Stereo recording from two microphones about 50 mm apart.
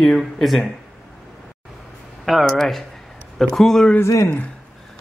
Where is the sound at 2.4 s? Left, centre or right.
Centre.